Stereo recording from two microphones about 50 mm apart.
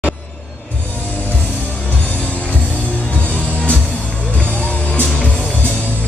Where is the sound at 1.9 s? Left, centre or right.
Left.